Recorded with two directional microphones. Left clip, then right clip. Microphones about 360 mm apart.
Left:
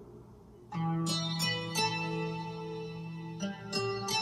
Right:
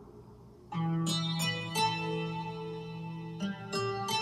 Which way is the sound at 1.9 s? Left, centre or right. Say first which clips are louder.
Right 1 dB; centre.